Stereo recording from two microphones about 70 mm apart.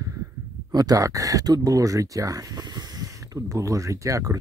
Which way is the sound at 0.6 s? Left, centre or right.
Right.